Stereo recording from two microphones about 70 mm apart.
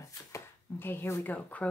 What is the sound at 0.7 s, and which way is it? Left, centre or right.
Speech, left.